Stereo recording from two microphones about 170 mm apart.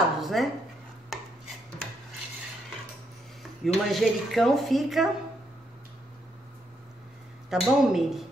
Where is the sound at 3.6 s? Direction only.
Centre (ahead or behind).